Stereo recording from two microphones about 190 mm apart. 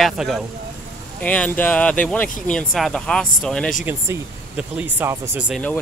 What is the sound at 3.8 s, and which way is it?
Speech, 10° right (ahead or behind).